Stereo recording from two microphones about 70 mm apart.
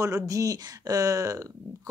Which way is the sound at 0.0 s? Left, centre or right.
Right.